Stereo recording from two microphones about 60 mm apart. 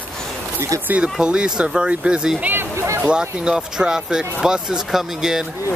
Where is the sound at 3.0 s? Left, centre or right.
Centre.